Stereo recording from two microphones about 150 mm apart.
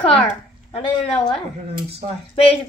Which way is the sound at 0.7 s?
30° left (ahead or behind).